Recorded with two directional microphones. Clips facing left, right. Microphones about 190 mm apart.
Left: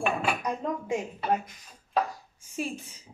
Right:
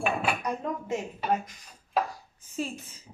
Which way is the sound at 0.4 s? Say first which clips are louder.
Left 1 dB; 10° left (ahead or behind).